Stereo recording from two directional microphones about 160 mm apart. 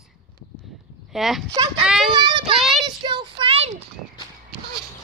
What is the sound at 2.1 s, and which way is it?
A child's voice, 30° right (ahead or behind).